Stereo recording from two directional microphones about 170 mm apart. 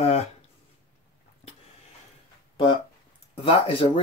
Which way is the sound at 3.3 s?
35° left (ahead or behind).